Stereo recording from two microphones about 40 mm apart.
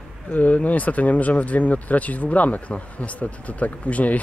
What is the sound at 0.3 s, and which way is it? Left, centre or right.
Speech, left.